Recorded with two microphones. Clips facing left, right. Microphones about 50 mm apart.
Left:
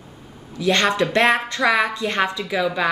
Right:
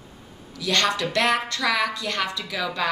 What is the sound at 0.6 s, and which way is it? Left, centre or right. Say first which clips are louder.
A woman's voice: left 5 dB; left.